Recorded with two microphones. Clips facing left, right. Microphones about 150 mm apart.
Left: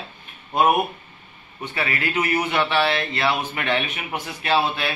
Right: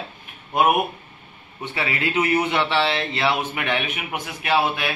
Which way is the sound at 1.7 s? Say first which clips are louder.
Right 1 dB; 20° right (ahead or behind).